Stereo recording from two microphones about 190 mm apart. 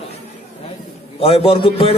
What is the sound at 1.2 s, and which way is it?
Speech, 30° left (ahead or behind).